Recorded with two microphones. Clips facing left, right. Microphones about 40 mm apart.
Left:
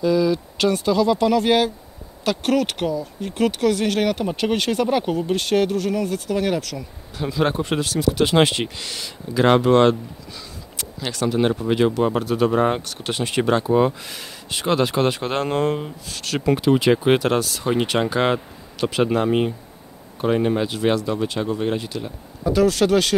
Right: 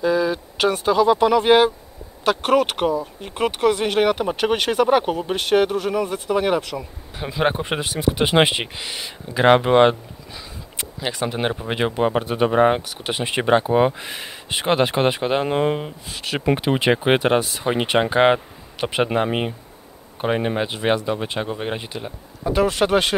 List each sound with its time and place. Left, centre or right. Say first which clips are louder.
0.0 s speech: left 1 dB; right
15.2 s speech: right 2 dB; centre